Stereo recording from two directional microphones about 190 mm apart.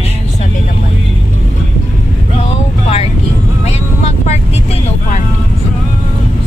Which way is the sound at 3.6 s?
35° left (ahead or behind).